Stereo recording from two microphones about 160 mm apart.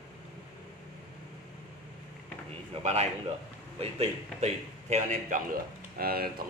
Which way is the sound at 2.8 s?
45° right (ahead or behind).